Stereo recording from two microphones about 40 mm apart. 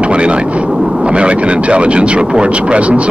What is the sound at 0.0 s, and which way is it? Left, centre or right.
Aircraft, right.